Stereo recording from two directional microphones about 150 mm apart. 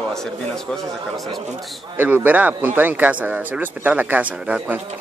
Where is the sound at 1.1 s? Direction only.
25° right (ahead or behind).